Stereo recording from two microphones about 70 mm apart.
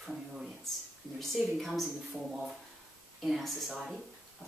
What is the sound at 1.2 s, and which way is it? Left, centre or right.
Speech, centre.